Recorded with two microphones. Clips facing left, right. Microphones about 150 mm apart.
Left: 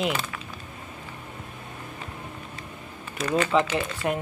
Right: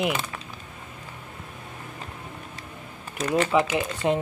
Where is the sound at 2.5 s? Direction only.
40° right (ahead or behind).